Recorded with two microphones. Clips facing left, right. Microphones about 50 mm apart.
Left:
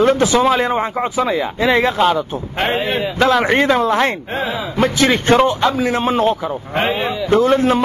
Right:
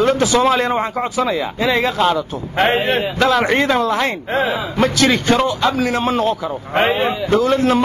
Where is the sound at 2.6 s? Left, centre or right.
Centre.